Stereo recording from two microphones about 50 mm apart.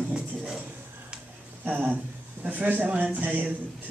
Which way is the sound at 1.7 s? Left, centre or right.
Right.